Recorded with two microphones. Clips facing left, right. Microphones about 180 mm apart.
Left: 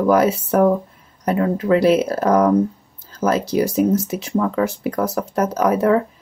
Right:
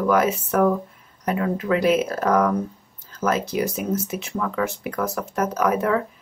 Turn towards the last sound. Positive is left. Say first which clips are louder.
# left 5 dB
turn(degrees=35)  # may be behind; listen again after turning